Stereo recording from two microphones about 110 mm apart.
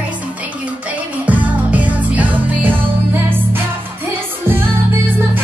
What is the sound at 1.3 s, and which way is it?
Music, 15° right (ahead or behind).